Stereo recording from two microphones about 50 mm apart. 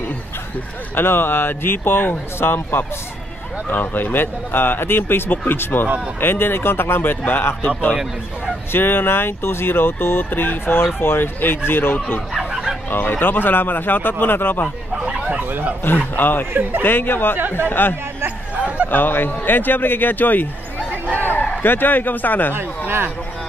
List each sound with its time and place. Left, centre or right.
0.9 s speech: left
8.7 s speech: left
12.4 s bow-wow: centre
12.9 s speech: left
15.0 s a sound: right
15.3 s dog: right
15.8 s speech: left
17.4 s speech: right
17.6 s speech: left
21.6 s speech: left
22.5 s speech: right